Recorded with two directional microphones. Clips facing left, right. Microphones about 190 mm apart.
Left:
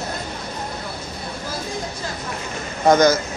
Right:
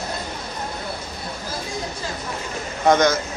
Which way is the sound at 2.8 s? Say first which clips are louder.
Left 2 dB; centre (ahead or behind).